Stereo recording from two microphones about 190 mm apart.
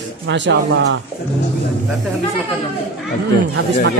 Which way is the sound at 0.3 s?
70° right (ahead or behind).